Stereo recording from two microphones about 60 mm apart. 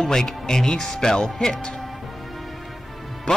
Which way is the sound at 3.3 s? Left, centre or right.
Centre.